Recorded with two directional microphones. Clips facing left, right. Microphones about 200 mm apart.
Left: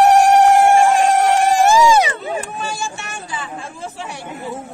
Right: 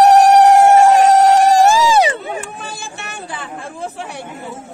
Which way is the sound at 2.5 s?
60° right (ahead or behind).